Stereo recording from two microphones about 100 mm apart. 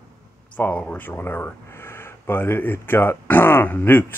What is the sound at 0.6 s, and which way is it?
Speech, 15° left (ahead or behind).